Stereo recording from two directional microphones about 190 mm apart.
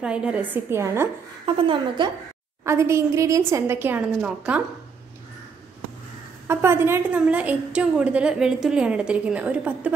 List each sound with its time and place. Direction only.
0.0 s a woman's voice: 5° right (ahead or behind)
1.4 s a woman's voice: 25° right (ahead or behind)
2.6 s a woman's voice: 15° right (ahead or behind)
6.4 s a woman's voice: 15° right (ahead or behind)